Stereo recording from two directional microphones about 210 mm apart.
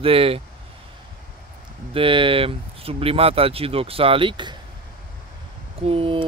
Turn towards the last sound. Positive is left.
turn(degrees=-25)  # may be behind; listen again after turning